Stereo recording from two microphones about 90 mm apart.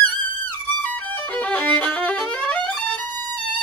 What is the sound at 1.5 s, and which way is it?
Violin, 20° left (ahead or behind).